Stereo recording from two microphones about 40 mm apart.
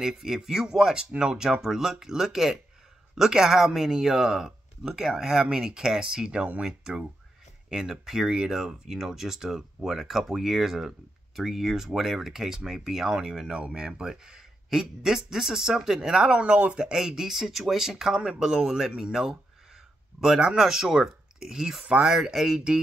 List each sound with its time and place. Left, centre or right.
0.0 s speech: centre
16.8 s speech: centre
20.5 s speech: centre